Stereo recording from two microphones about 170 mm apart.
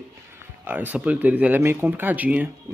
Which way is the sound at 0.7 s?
10° right (ahead or behind).